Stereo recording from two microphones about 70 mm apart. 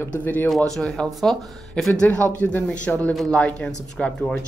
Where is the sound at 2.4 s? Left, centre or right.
Left; by 4.3 s centre.